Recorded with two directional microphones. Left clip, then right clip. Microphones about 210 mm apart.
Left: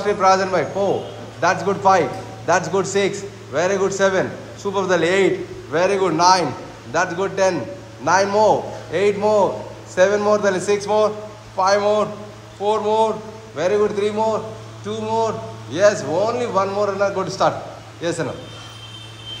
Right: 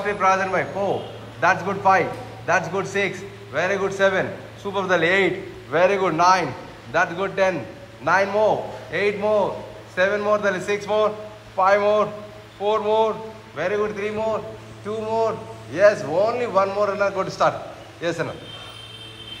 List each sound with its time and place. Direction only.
0.0 s a man's voice: 20° left (ahead or behind)
14.9 s a man's voice: 5° left (ahead or behind)